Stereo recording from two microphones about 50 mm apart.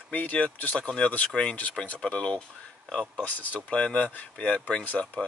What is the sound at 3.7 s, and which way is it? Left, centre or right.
Speech, left.